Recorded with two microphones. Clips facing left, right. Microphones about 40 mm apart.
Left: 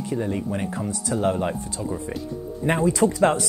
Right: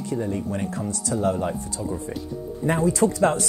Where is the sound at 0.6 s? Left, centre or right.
Left.